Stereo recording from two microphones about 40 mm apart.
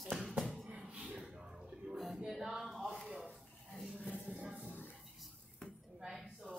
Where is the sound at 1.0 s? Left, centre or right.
Right.